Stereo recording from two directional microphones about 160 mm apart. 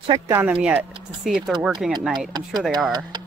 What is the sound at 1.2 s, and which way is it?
Speech, centre (ahead or behind).